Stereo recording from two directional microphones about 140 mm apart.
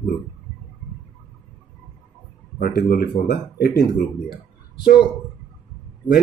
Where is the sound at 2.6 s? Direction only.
90° left.